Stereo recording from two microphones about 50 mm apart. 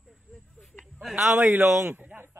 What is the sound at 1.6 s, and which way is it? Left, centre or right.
Speech, right.